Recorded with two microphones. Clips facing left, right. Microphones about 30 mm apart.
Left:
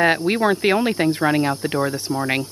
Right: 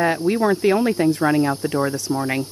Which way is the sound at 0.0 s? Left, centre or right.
Left.